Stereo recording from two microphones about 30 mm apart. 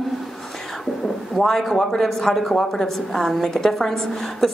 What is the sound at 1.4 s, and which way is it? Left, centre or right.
Speech, centre.